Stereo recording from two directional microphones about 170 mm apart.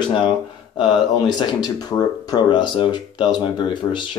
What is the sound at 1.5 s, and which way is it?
Speech, 25° left (ahead or behind).